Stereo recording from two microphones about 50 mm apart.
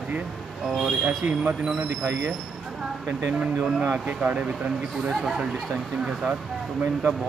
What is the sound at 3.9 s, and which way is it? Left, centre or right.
Speech, right.